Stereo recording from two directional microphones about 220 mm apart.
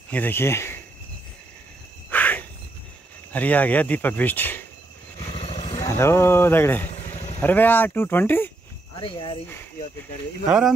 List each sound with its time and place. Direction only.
0.1 s speech: 10° left (ahead or behind)
2.0 s a sound: 5° left (ahead or behind)
3.3 s speech: 5° left (ahead or behind)
5.3 s vehicle: 30° left (ahead or behind)
5.8 s speech: 10° left (ahead or behind)
7.0 s vehicle: 30° left (ahead or behind)
7.3 s speech: 10° left (ahead or behind)
8.9 s speech: 25° left (ahead or behind)